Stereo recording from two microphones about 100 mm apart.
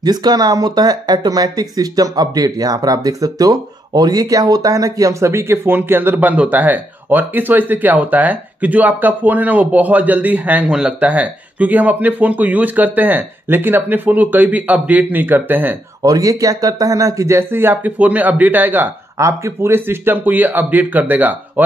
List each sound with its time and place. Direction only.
0.0 s speech: 45° right (ahead or behind); by 15.7 s 20° right (ahead or behind)
16.0 s speech: 35° right (ahead or behind); by 18.9 s 20° right (ahead or behind)
19.1 s speech: 30° right (ahead or behind)